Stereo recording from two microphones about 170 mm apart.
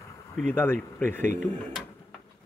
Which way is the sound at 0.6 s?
15° left (ahead or behind).